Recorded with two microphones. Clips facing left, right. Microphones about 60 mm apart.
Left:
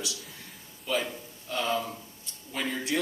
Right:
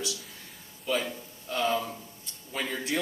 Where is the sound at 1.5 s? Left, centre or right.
Right.